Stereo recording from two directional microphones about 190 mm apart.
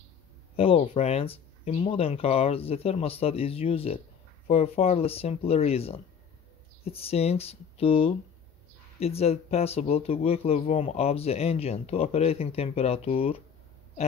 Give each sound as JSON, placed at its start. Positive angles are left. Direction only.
{"t": 0.6, "sound": "speech", "side_deg": 30}